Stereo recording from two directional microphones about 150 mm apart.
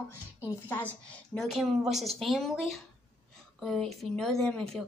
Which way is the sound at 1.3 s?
Centre (ahead or behind).